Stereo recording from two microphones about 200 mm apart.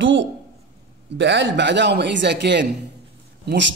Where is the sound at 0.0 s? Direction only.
65° right (ahead or behind).